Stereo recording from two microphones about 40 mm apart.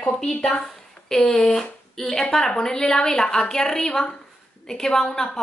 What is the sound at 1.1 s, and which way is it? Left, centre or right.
A woman's voice, centre.